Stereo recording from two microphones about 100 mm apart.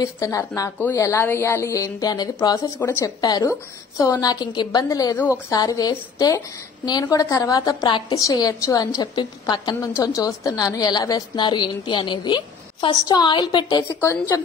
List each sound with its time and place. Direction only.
0.2 s a woman's voice: 30° left (ahead or behind)
2.8 s speech: 20° left (ahead or behind)
3.2 s a woman's voice: 40° left (ahead or behind)
9.8 s a woman's voice: 35° left (ahead or behind); by 13.7 s 50° left (ahead or behind)
13.7 s a woman's voice: 35° left (ahead or behind)